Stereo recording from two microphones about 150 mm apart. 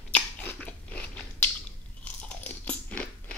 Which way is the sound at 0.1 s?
10° left (ahead or behind).